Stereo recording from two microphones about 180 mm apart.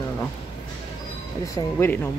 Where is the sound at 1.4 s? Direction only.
15° left (ahead or behind).